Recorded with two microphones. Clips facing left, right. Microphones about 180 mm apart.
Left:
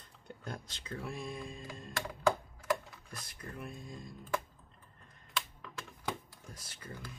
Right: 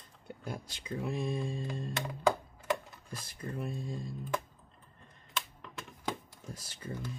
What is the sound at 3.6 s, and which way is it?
Speech, 30° right (ahead or behind).